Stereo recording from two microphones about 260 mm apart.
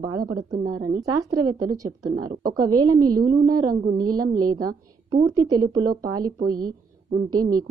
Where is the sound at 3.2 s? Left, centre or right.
Centre.